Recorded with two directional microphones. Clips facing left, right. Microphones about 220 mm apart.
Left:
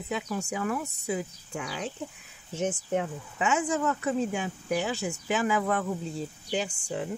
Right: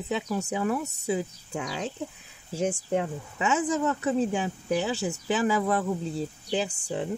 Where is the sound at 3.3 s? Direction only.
30° right (ahead or behind).